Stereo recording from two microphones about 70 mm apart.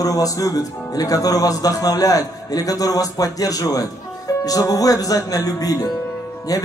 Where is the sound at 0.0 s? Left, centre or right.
Left.